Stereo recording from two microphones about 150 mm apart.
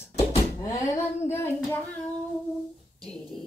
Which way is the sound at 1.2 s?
15° left (ahead or behind).